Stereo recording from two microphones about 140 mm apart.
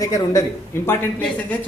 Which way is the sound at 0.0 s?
25° left (ahead or behind).